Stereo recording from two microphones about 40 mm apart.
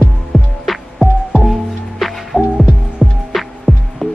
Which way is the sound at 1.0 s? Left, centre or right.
Centre.